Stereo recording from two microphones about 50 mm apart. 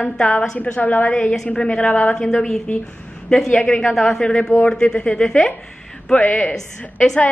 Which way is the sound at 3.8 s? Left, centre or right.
Centre.